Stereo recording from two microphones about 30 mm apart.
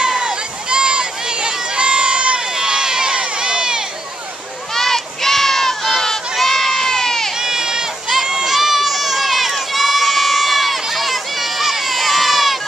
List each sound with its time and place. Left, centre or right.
0.3 s run: right
4.7 s crowd: centre
7.3 s sheep: centre
8.5 s run: centre